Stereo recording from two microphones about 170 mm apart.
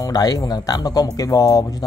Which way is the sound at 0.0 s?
20° left (ahead or behind).